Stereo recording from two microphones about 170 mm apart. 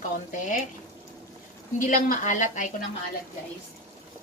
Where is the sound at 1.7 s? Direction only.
50° left (ahead or behind).